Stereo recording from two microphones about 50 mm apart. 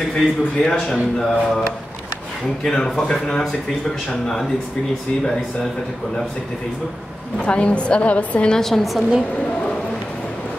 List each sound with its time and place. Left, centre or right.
0.1 s speech: centre
2.6 s speech: centre
4.1 s speech: centre
7.4 s a woman's voice: left
8.5 s speech: centre